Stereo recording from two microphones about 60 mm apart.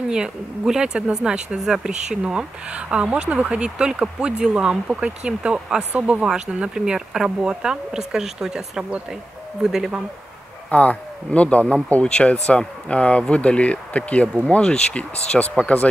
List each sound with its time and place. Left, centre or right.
0.1 s speech: centre
10.7 s a man's voice: left